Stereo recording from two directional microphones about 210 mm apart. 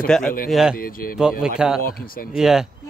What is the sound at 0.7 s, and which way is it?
Speech, 45° left (ahead or behind).